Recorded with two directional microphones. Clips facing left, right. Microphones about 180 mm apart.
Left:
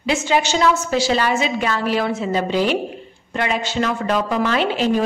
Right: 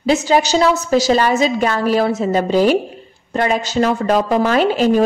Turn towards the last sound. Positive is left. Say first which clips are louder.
# right 5 dB
turn(degrees=-45)  # may be behind; listen again after turning